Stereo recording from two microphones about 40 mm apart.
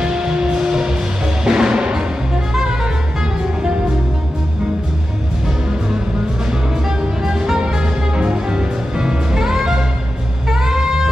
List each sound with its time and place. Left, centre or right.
0.0 s music: centre
7.2 s music: centre
10.5 s saxophone: centre